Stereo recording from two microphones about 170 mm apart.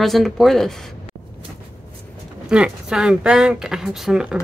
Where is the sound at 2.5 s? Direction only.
5° right (ahead or behind).